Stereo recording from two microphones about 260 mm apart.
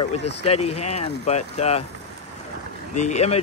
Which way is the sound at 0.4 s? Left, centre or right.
Left.